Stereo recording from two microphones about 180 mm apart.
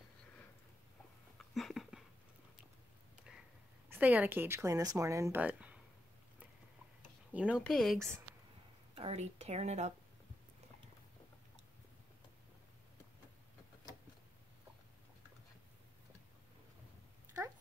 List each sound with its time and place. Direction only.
1.5 s a sound: centre (ahead or behind)
3.9 s speech: 10° right (ahead or behind)
7.3 s speech: 5° right (ahead or behind)
8.9 s speech: 35° right (ahead or behind)